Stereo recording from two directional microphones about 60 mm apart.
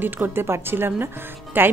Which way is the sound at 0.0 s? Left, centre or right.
Right.